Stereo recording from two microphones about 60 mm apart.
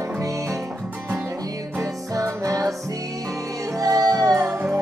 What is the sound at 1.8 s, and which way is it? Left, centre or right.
Music, right.